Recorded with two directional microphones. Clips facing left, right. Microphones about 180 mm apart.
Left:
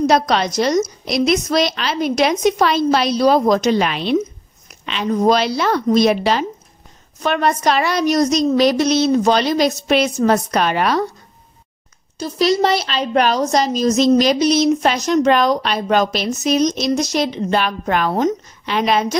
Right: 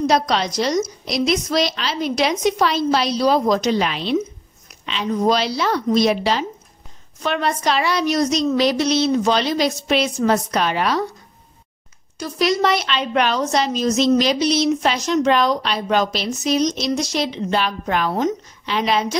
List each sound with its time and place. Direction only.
0.0 s a woman's voice: 50° left (ahead or behind)
12.2 s a woman's voice: 30° left (ahead or behind); by 19.0 s 55° left (ahead or behind)